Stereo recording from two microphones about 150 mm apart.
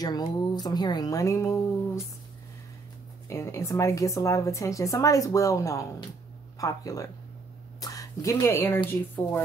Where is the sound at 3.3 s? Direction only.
20° left (ahead or behind).